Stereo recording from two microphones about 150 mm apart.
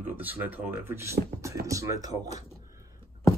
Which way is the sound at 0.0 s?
10° right (ahead or behind).